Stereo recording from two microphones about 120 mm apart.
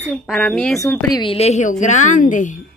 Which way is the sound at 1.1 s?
50° left (ahead or behind).